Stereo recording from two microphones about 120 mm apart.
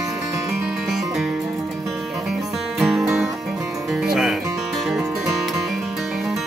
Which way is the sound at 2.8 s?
5° right (ahead or behind).